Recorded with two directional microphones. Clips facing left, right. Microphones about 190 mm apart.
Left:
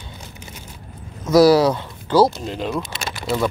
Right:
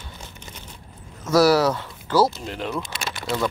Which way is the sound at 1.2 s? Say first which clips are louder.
Left 4 dB; 15° left (ahead or behind).